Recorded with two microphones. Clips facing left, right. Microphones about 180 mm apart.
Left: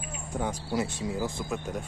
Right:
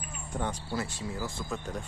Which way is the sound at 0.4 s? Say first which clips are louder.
Left 4 dB; 10° left (ahead or behind).